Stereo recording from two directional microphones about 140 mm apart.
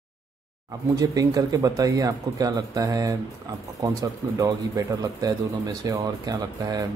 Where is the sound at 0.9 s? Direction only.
25° right (ahead or behind).